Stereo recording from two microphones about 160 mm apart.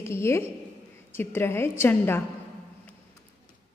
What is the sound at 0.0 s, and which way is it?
A woman's voice, 15° left (ahead or behind).